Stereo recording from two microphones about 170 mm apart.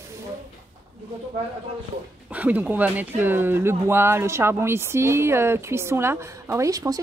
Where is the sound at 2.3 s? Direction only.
10° right (ahead or behind).